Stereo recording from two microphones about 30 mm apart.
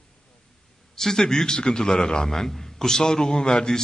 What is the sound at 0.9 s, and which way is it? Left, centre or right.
A man's voice, centre.